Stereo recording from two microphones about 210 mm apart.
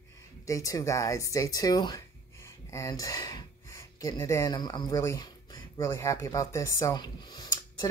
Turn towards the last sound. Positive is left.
turn(degrees=20)  # may be behind; listen again after turning